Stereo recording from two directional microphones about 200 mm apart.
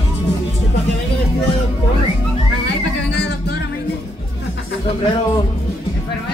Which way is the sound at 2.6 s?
55° left (ahead or behind).